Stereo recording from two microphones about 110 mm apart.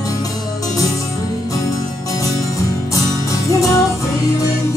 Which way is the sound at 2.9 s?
30° left (ahead or behind).